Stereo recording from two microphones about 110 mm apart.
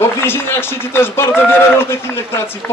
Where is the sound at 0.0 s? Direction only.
20° left (ahead or behind).